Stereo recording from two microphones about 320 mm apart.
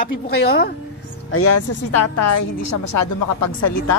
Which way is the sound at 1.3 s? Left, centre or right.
Left.